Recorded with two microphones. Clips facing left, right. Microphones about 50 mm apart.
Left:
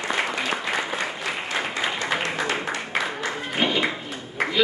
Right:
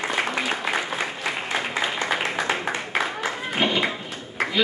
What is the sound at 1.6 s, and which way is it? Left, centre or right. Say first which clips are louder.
Applause: left 1 dB; centre.